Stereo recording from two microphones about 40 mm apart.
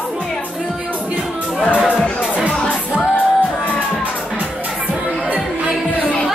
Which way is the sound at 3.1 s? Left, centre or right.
Left.